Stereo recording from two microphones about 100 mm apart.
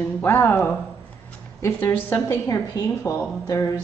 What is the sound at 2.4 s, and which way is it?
A woman's voice, 35° left (ahead or behind).